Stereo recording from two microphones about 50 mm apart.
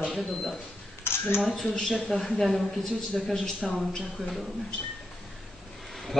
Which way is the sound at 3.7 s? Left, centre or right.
Centre.